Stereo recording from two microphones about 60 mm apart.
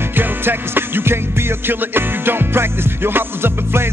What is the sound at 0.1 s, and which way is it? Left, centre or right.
Music, right.